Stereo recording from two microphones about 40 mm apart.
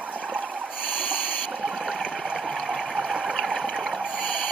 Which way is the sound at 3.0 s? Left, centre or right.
Centre.